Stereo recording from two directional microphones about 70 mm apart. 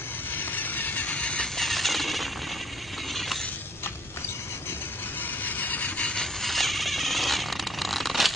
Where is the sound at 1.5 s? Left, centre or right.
Centre.